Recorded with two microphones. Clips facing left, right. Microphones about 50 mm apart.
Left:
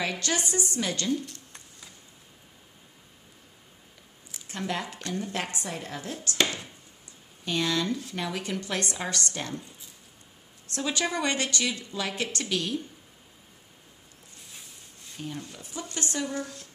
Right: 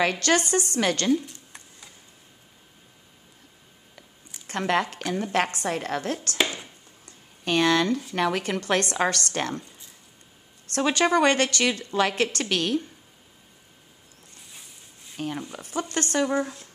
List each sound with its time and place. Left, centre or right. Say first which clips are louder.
0.0 s speech: right 7 dB; right
4.5 s speech: right 8 dB; right
6.3 s chopping: left 1 dB; centre
7.4 s speech: right 6 dB; right
10.7 s speech: right 8 dB; right
14.5 s a sound: left 1 dB; centre
15.1 s speech: right 6 dB; right
15.5 s speech: right 8 dB; right